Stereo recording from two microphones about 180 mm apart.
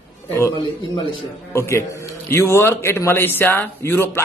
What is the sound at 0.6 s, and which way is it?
Speech, 30° left (ahead or behind).